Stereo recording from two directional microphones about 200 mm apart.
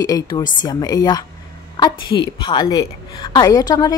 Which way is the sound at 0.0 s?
15° left (ahead or behind).